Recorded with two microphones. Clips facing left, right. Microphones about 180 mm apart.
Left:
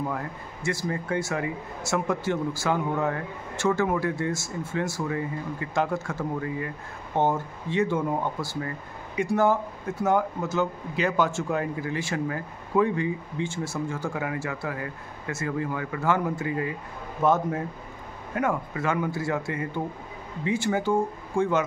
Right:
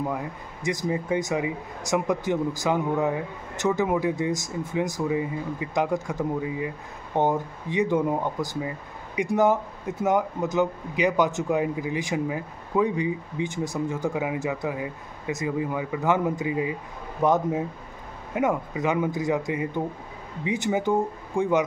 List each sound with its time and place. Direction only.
0.0 s speech: 15° right (ahead or behind)